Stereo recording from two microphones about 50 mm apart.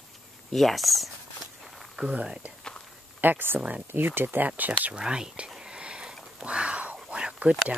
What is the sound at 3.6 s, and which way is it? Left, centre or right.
Speech, right.